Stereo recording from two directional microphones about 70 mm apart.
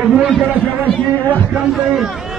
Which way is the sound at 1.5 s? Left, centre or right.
Centre.